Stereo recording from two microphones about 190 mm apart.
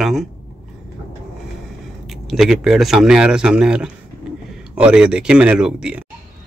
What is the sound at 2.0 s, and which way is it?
A man's voice, centre (ahead or behind).